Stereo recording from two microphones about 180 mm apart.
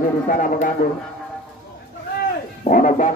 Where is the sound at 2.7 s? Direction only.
45° left (ahead or behind).